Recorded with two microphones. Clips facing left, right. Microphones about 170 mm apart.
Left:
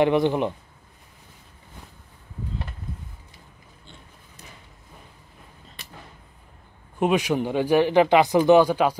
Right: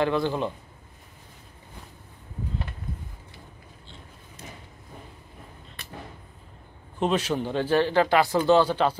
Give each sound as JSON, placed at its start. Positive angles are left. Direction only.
{"t": 0.0, "sound": "speech", "side_deg": 20}
{"t": 7.0, "sound": "speech", "side_deg": 10}